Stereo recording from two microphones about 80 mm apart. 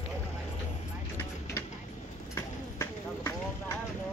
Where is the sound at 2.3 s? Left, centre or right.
Left.